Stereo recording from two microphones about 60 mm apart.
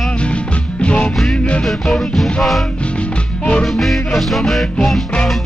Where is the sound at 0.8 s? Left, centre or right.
Centre.